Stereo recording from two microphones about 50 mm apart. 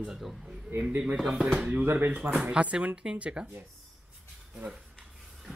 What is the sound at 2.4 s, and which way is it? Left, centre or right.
Speech, right.